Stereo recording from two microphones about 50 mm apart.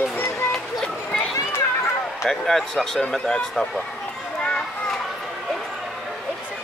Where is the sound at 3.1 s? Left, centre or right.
Centre.